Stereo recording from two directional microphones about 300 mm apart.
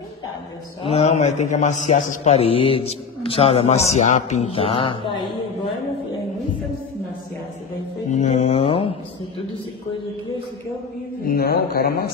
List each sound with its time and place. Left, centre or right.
0.8 s a man's voice: left
8.1 s mantra: left
11.2 s speech: left